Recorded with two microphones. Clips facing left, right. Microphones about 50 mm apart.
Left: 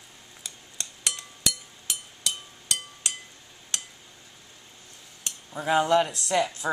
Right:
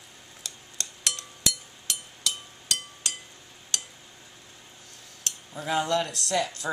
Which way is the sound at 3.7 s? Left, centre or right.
Centre.